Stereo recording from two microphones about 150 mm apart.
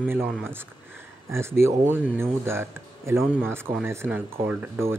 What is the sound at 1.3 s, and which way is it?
Speech, 15° right (ahead or behind).